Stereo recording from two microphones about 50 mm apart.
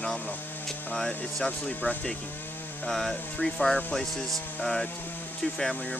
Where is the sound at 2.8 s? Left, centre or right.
Centre.